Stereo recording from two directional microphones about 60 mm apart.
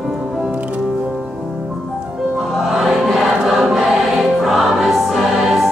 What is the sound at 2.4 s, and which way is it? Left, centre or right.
Music, centre.